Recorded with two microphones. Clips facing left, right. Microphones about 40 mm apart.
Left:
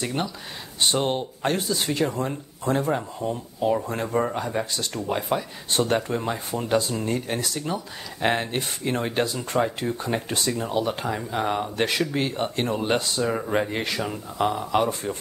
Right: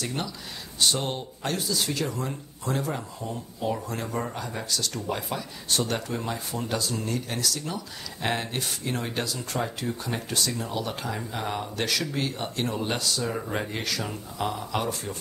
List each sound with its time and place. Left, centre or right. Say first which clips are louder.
0.0 s speech: left 4 dB; left